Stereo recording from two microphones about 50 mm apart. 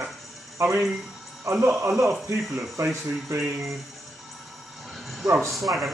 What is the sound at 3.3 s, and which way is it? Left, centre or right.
Speech, right.